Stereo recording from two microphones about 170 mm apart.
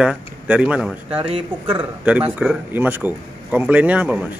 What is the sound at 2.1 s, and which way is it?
Speech, 10° right (ahead or behind).